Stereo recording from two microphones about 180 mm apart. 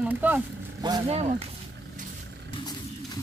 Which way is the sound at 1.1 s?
35° right (ahead or behind).